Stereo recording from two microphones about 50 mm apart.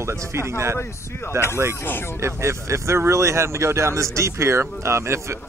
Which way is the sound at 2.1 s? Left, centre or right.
Right.